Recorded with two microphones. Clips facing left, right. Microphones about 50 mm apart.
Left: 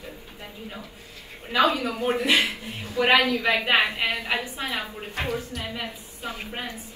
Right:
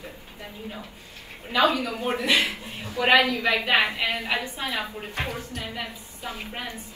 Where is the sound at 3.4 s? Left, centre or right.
Left.